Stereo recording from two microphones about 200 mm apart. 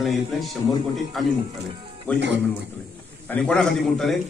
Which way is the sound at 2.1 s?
60° right (ahead or behind).